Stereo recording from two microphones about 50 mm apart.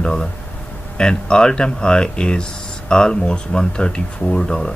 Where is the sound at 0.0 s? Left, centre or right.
Centre.